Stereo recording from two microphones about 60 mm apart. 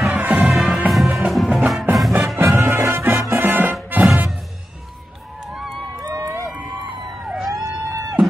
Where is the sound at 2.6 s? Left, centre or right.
Right.